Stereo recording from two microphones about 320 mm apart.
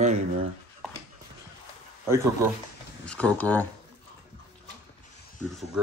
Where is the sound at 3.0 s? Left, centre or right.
Centre.